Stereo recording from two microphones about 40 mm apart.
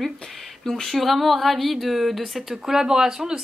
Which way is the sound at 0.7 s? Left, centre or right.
Centre.